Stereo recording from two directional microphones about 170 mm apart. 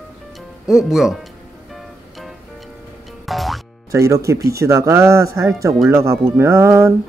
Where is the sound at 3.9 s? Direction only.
20° right (ahead or behind).